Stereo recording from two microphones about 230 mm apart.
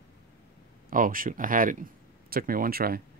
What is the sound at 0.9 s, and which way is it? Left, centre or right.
Speech, right.